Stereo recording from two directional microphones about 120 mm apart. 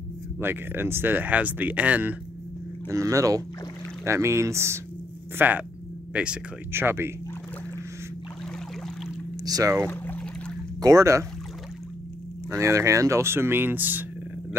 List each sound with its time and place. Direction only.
0.4 s speech: 20° right (ahead or behind)
2.9 s speech: 25° right (ahead or behind); by 6.4 s 10° right (ahead or behind)
6.7 s speech: 20° right (ahead or behind)
9.4 s speech: 30° right (ahead or behind)
9.8 s boat: 15° left (ahead or behind)
10.8 s speech: 25° right (ahead or behind)
12.4 s speech: 25° right (ahead or behind)